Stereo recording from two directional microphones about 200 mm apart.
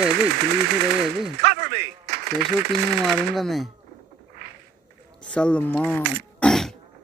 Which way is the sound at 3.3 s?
Centre (ahead or behind).